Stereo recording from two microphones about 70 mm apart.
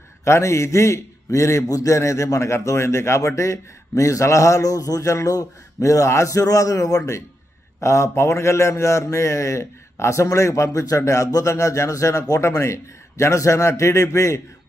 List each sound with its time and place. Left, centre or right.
0.2 s a man's voice: left